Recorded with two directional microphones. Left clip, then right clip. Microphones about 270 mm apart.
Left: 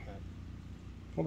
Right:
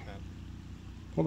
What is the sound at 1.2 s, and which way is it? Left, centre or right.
Speech, centre.